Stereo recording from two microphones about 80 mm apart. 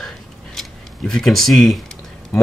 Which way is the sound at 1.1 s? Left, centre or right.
Centre.